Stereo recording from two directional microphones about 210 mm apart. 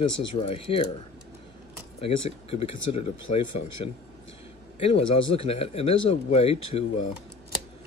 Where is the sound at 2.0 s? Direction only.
30° left (ahead or behind).